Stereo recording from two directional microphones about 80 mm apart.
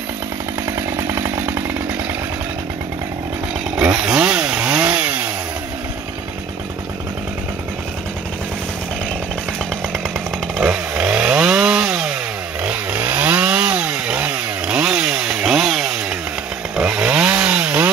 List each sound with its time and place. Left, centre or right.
0.7 s chainsaw: right
3.7 s chainsaw: centre
10.6 s chainsaw: centre
12.6 s chainsaw: centre